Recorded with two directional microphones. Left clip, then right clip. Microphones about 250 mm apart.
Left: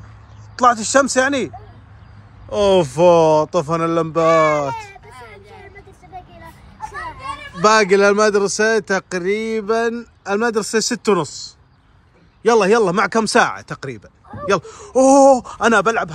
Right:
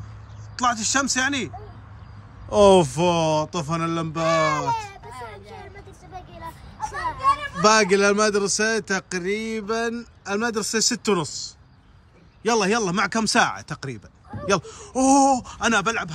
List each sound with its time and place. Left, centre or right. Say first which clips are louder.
0.6 s speech: left 8 dB; centre
2.5 s speech: even; right
2.8 s speech: left 9 dB; centre
5.0 s a sound: right 1 dB; right
6.1 s a sound: even; centre
7.6 s speech: left 5 dB; centre